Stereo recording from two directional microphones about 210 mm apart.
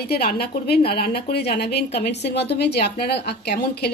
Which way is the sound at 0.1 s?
50° left (ahead or behind).